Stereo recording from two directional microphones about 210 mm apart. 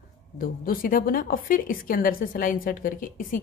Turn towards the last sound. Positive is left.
turn(degrees=40)  # may be behind; listen again after turning